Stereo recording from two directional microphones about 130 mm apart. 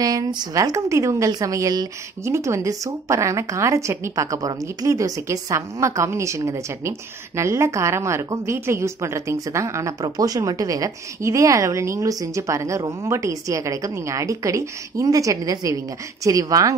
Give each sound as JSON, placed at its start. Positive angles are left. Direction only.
{"t": 0.0, "sound": "a woman's voice", "side_deg": -30}